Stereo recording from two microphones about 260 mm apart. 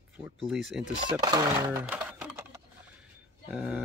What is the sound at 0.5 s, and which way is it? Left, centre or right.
Speech, centre.